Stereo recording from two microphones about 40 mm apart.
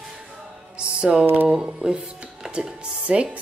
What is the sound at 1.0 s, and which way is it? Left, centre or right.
Speech, right.